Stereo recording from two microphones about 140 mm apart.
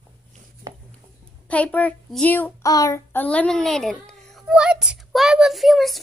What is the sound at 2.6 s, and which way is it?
Child singing, 25° left (ahead or behind).